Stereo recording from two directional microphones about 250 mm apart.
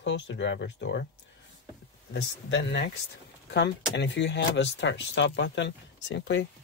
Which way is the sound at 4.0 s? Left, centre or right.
Left.